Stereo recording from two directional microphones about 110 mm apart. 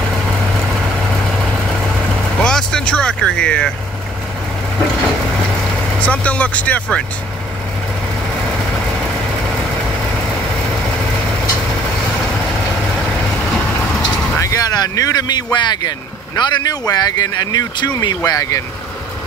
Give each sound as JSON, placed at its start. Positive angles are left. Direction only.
{"t": 2.4, "sound": "vehicle", "side_deg": 5}
{"t": 5.9, "sound": "speech", "side_deg": 15}
{"t": 14.4, "sound": "speech", "side_deg": 30}